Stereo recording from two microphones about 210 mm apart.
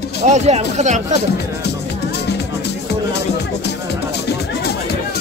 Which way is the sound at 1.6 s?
55° left (ahead or behind).